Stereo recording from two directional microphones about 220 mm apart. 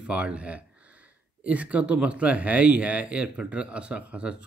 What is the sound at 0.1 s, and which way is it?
Speech, 5° right (ahead or behind).